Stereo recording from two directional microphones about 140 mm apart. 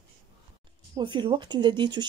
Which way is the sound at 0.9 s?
35° right (ahead or behind).